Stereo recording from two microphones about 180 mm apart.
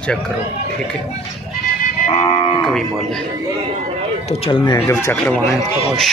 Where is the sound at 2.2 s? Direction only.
30° left (ahead or behind).